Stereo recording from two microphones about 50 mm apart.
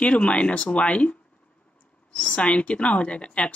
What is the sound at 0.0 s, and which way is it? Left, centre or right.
Speech, left.